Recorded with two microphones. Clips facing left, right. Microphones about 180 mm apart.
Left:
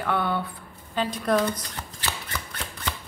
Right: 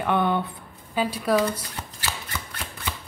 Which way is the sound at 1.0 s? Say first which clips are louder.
Right 1 dB; 5° right (ahead or behind).